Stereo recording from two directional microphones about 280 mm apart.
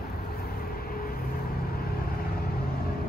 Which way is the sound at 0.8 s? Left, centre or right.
Left.